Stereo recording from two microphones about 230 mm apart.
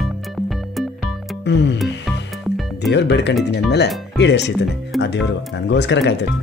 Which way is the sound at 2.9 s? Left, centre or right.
Left.